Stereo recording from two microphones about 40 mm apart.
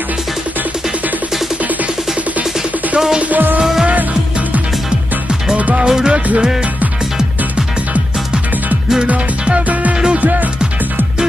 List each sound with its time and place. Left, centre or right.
3.2 s music: right
5.6 s music: right
5.9 s music: centre
9.0 s music: right